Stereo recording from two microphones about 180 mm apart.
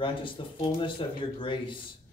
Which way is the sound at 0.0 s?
30° left (ahead or behind).